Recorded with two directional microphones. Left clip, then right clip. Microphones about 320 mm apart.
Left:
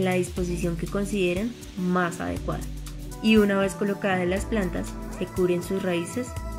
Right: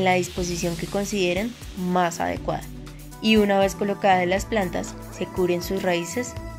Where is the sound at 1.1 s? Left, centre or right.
Centre.